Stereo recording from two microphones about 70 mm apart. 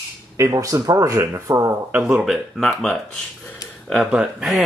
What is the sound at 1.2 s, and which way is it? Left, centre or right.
Speech, right.